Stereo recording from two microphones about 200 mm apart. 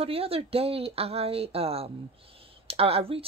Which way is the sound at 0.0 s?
30° right (ahead or behind).